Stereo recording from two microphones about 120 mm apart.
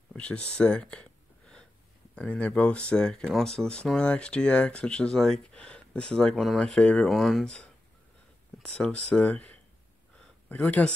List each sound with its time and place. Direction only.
0.1 s speech: 10° left (ahead or behind)
2.1 s speech: 10° left (ahead or behind)
10.1 s a sound: 10° left (ahead or behind)